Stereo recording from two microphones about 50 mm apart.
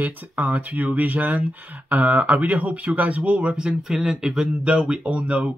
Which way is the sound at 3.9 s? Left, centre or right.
Centre.